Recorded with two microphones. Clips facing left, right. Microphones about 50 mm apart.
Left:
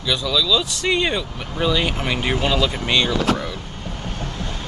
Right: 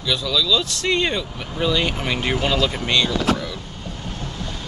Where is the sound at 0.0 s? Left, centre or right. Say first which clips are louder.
Left 1 dB; centre.